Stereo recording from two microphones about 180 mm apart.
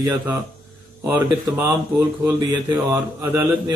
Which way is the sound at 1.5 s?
10° right (ahead or behind).